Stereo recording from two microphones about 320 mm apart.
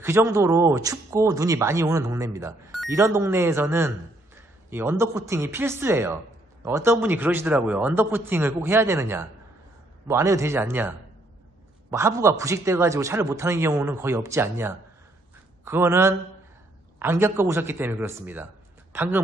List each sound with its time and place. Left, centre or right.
0.0 s speech: centre
11.9 s speech: centre